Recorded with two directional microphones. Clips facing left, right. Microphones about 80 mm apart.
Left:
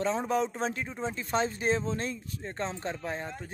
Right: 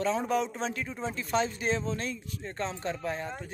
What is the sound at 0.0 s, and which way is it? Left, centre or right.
Speech, left.